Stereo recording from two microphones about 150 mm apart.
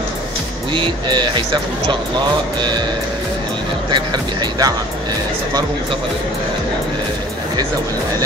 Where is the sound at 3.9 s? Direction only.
30° right (ahead or behind).